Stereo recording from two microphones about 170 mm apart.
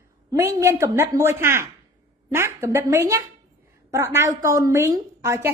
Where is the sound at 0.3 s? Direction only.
15° right (ahead or behind).